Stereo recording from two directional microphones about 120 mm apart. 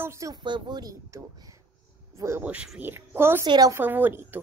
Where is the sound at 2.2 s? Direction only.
25° right (ahead or behind).